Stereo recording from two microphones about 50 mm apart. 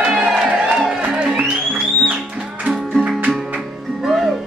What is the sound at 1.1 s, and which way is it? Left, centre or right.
Music, centre.